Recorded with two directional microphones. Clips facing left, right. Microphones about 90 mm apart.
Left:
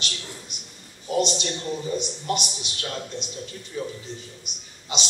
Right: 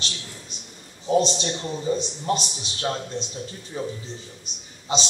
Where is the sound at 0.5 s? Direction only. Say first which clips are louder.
Right 1 dB; 30° right (ahead or behind).